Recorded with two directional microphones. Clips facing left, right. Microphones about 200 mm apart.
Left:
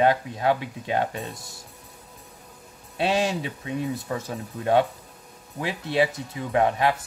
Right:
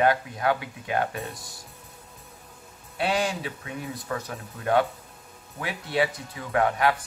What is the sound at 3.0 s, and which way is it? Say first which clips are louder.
Speech: left 3 dB; 25° left (ahead or behind).